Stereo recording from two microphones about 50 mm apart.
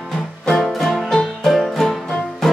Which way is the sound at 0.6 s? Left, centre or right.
Centre.